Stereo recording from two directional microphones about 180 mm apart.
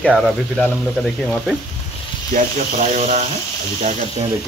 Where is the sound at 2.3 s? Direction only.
45° right (ahead or behind).